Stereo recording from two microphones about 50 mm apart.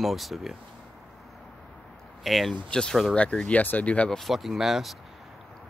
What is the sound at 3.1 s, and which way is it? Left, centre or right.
Speech, left.